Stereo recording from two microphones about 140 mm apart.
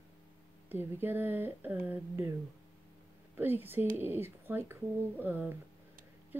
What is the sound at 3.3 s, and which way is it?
Speech, 15° right (ahead or behind).